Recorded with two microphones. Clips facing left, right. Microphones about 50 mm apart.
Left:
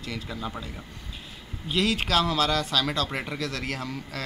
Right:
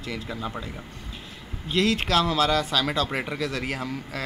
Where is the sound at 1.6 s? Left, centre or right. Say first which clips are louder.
Right 2 dB; centre.